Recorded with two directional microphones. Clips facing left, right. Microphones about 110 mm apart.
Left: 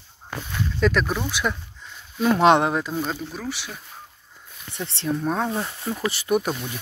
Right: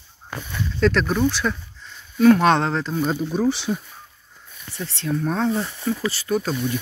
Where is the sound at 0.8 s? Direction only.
5° left (ahead or behind).